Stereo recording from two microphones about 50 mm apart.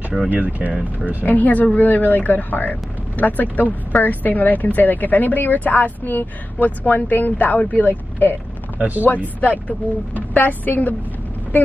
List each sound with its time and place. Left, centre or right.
0.3 s speech: right
1.2 s speech: left
8.7 s speech: right
9.4 s speech: left